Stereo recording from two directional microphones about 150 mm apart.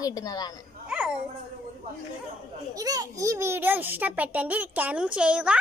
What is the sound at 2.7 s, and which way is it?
A child's voice, 25° right (ahead or behind).